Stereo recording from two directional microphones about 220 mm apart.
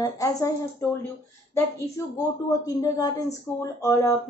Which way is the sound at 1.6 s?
15° left (ahead or behind).